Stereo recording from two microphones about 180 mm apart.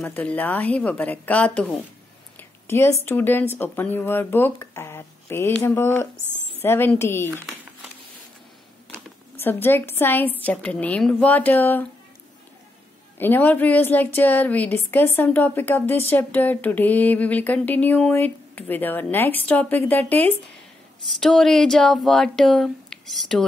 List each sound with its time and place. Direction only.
0.0 s a woman's voice: 10° left (ahead or behind)
2.3 s a sound: 15° left (ahead or behind)
3.1 s a woman's voice: 10° left (ahead or behind)
8.9 s a woman's voice: 10° left (ahead or behind)
13.2 s a woman's voice: 10° left (ahead or behind)